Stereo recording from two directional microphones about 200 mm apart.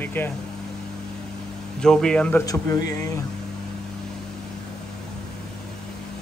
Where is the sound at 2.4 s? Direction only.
15° left (ahead or behind).